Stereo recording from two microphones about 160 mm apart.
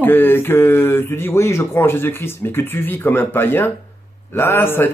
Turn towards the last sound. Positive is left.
turn(degrees=15)  # may be behind; listen again after turning